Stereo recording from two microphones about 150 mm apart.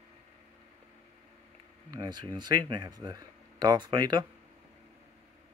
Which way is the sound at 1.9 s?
25° right (ahead or behind).